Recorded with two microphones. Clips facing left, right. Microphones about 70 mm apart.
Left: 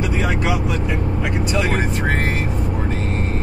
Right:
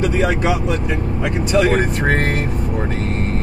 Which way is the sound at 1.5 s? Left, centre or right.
Right.